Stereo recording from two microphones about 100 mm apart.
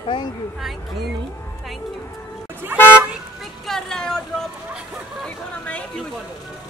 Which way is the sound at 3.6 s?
5° left (ahead or behind).